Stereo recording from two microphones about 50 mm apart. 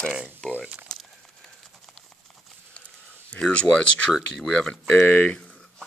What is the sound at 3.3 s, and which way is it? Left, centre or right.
Speech, left.